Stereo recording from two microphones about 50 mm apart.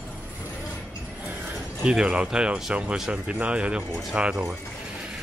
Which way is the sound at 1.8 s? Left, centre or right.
Centre.